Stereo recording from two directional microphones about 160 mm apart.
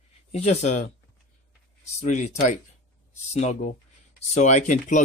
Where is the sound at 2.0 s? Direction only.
50° left (ahead or behind).